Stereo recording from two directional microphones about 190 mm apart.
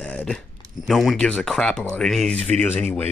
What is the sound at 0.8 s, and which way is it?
Speech, centre (ahead or behind).